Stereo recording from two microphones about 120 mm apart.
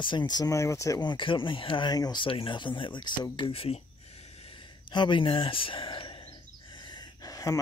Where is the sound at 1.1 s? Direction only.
45° left (ahead or behind).